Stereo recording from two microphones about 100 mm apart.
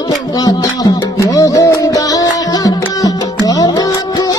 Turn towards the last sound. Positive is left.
turn(degrees=40)  # may be behind; listen again after turning